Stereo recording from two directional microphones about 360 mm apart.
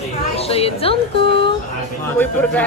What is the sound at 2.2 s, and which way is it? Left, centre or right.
Speech, centre.